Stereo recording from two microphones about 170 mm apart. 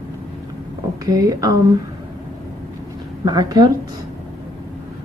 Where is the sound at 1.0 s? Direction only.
20° right (ahead or behind).